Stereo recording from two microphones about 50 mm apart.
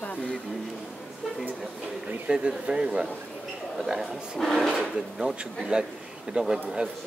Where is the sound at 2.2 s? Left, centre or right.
Centre.